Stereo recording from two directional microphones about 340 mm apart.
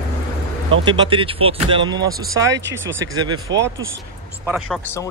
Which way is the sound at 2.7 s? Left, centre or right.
Right.